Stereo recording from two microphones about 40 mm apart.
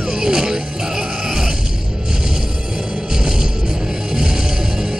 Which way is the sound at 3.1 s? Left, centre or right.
Centre.